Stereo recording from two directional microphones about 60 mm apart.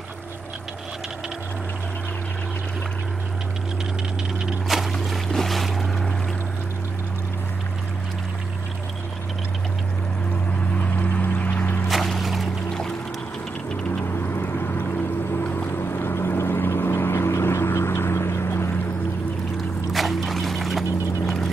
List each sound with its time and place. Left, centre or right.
4.6 s boat: centre
11.0 s music: left
11.9 s music: centre
14.2 s vehicle: left
19.9 s music: centre